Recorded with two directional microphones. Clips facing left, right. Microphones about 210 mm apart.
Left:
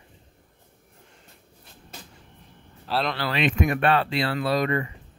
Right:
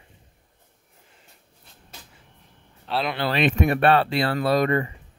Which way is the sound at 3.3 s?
35° right (ahead or behind).